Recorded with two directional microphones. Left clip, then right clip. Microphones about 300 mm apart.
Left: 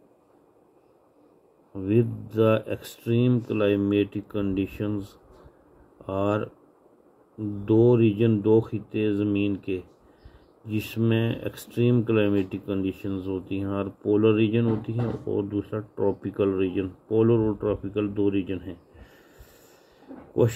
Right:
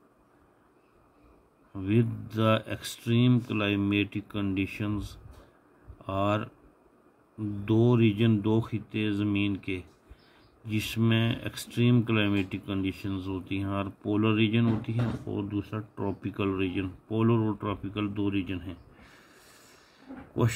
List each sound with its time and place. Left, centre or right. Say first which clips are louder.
1.9 s speech: left 5 dB; centre